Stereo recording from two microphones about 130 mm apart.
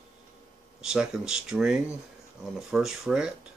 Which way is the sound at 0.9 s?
5° right (ahead or behind).